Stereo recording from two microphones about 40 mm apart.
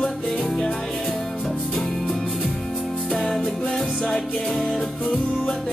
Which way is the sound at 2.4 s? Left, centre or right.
Centre.